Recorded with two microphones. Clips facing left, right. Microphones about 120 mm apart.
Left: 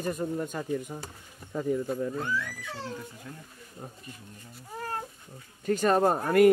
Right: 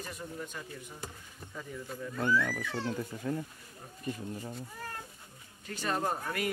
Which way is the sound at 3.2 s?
60° right (ahead or behind).